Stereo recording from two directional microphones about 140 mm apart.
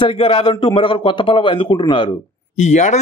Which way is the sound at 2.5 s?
55° left (ahead or behind).